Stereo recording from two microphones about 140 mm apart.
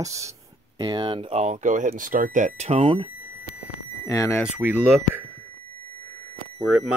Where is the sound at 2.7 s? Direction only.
40° right (ahead or behind).